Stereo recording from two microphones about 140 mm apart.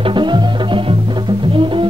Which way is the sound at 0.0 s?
35° right (ahead or behind).